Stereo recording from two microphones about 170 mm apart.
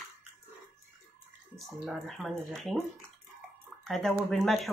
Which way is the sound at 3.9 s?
Centre (ahead or behind).